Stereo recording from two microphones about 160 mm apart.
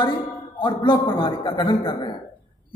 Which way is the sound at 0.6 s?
30° left (ahead or behind).